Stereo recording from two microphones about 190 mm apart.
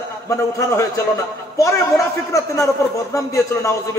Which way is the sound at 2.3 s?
15° left (ahead or behind).